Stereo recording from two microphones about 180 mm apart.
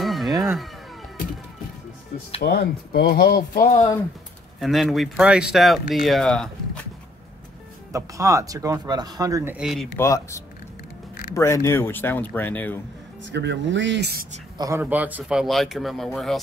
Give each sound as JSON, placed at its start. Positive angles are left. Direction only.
{"t": 0.0, "sound": "a sound", "side_deg": 0}
{"t": 2.4, "sound": "speech", "side_deg": 60}
{"t": 4.6, "sound": "speech", "side_deg": 0}
{"t": 7.9, "sound": "speech", "side_deg": -15}
{"t": 9.9, "sound": "speech", "side_deg": 15}
{"t": 13.2, "sound": "speech", "side_deg": -75}
{"t": 14.6, "sound": "speech", "side_deg": -15}